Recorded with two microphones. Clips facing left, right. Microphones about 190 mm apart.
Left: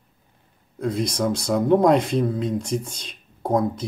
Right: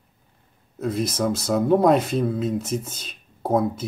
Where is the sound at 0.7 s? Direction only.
5° right (ahead or behind).